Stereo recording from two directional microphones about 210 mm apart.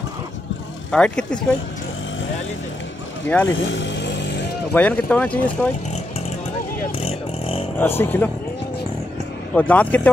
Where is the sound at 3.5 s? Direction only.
60° left (ahead or behind).